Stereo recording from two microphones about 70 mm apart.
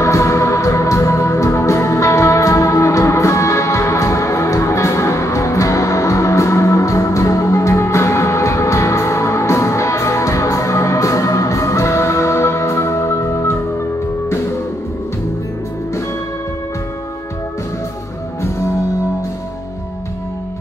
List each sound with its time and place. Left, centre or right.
0.0 s music: left